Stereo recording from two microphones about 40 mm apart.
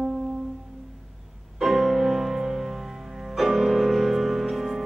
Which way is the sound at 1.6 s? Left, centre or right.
Centre.